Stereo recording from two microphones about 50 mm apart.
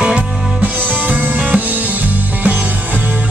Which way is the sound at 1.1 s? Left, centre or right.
Right.